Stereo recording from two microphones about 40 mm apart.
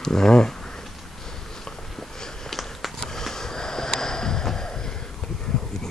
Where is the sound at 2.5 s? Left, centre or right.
Centre.